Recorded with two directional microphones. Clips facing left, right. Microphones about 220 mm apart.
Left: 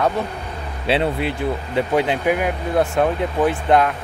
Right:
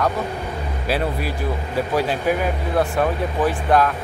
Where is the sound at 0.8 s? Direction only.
25° left (ahead or behind).